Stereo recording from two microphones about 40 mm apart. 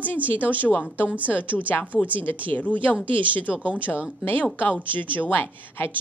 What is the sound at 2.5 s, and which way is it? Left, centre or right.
Speech, left.